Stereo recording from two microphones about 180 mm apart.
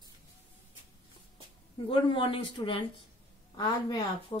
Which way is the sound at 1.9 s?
25° left (ahead or behind).